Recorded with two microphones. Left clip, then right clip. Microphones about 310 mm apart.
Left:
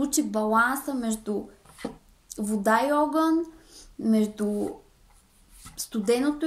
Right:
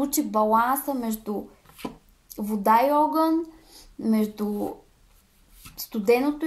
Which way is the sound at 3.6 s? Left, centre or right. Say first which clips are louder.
Even; right.